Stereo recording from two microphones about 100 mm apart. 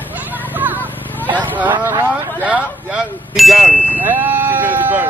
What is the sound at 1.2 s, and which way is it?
Speech, 15° right (ahead or behind).